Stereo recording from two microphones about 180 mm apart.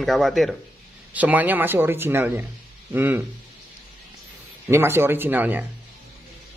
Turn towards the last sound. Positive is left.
turn(degrees=-10)  # may be behind; listen again after turning